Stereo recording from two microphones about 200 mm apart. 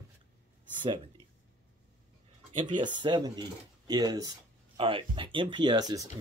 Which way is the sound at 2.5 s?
25° right (ahead or behind).